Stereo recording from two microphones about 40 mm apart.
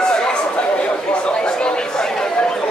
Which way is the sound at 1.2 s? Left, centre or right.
Left.